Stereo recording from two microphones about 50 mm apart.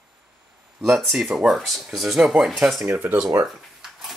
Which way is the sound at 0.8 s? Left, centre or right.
Centre.